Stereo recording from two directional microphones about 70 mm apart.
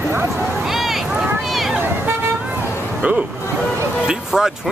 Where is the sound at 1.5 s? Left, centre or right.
Centre.